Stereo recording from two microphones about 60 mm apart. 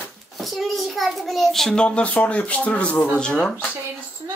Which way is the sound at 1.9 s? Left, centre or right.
Left.